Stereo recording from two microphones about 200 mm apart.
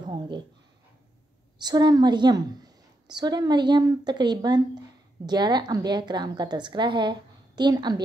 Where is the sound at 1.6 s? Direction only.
20° right (ahead or behind).